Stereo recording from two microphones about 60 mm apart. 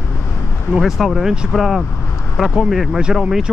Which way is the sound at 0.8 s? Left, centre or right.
Centre.